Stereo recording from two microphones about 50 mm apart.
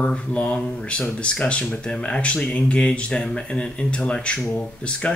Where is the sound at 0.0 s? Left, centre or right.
Left.